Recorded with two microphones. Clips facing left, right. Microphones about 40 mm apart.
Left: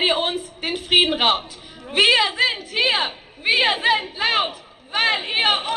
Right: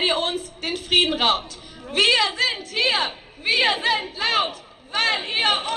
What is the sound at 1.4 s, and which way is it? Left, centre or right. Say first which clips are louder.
A woman's voice: even; centre.